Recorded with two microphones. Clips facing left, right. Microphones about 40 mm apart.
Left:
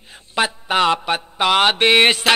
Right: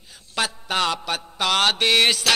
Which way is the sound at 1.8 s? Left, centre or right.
Left.